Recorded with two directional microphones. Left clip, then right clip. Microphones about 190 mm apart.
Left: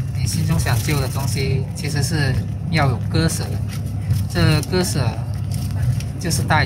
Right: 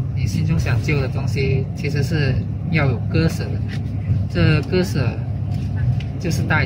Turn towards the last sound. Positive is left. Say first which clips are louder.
# left 2 dB
turn(degrees=10)  # may be behind; listen again after turning